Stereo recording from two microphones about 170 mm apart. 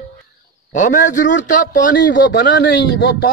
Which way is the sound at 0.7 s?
50° left (ahead or behind).